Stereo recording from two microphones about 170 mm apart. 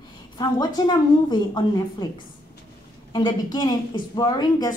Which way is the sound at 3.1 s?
25° left (ahead or behind).